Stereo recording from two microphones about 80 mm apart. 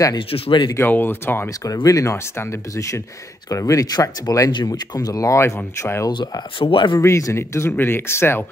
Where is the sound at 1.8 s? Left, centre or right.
Left.